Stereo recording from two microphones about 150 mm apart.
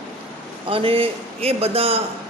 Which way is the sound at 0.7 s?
40° right (ahead or behind).